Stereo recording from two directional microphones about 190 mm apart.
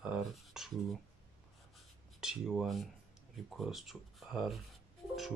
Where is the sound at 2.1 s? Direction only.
Centre (ahead or behind).